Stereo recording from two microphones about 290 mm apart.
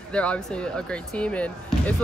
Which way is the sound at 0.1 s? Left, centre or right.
Centre.